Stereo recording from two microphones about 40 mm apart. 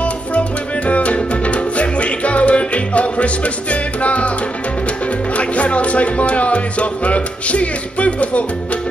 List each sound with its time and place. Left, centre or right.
0.0 s music: left
5.4 s music: left